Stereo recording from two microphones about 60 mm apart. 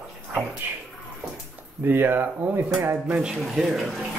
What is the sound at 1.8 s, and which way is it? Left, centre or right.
Speech, right.